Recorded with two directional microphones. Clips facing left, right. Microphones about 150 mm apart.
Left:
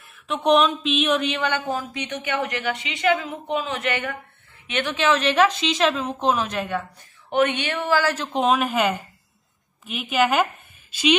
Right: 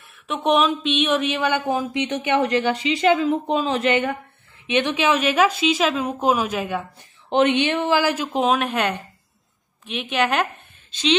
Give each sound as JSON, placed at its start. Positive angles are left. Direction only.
{"t": 0.0, "sound": "a woman's voice", "side_deg": 0}
{"t": 7.2, "sound": "speech", "side_deg": -25}
{"t": 8.0, "sound": "a woman's voice", "side_deg": -10}
{"t": 8.4, "sound": "a woman's voice", "side_deg": 0}